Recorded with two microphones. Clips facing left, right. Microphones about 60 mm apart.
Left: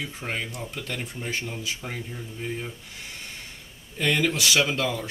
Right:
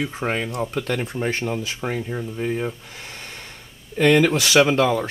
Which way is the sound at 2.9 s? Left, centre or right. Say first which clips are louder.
Right 3 dB; right.